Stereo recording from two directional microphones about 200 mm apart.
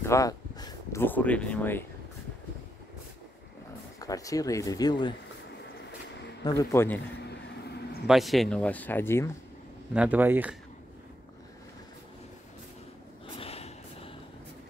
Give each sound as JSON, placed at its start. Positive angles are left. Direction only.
{"t": 0.0, "sound": "speech", "side_deg": 15}
{"t": 4.0, "sound": "speech", "side_deg": 15}
{"t": 6.4, "sound": "speech", "side_deg": 15}
{"t": 7.2, "sound": "vehicle", "side_deg": 55}
{"t": 8.1, "sound": "speech", "side_deg": 0}
{"t": 9.9, "sound": "speech", "side_deg": -10}
{"t": 13.4, "sound": "snort", "side_deg": 30}